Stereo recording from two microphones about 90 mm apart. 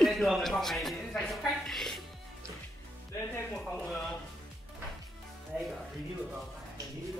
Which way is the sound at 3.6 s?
5° left (ahead or behind).